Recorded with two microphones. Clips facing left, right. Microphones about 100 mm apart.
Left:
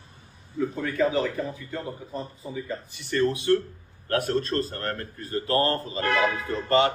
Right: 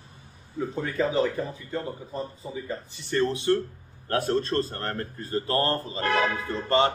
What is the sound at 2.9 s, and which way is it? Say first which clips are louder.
Speech: left 1 dB; 30° right (ahead or behind).